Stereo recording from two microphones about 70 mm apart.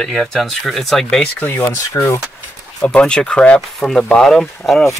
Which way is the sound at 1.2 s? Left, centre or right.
Left.